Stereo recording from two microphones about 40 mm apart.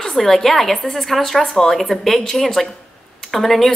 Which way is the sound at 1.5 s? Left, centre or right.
Centre.